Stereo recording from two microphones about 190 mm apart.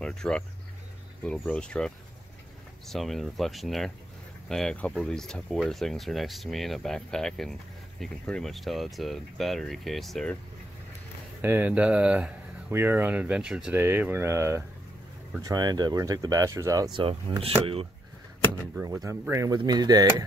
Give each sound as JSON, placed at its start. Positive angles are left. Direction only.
{"t": 0.0, "sound": "speech", "side_deg": 5}
{"t": 11.4, "sound": "speech", "side_deg": -10}
{"t": 18.8, "sound": "speech", "side_deg": -15}